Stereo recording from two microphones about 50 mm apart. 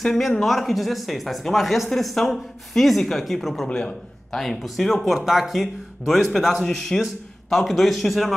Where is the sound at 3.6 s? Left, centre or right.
Centre.